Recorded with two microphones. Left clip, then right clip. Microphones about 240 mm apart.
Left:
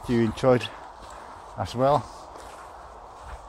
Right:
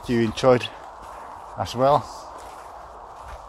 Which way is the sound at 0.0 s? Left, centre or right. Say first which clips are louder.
Right 3 dB; centre.